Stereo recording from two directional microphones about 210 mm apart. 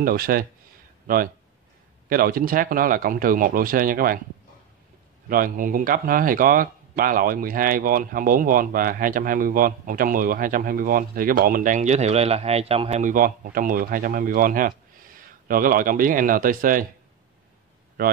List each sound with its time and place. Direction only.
0.0 s speech: 45° right (ahead or behind)
5.3 s speech: 40° right (ahead or behind)